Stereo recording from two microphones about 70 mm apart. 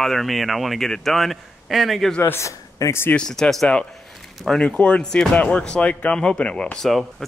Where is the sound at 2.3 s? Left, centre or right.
Left.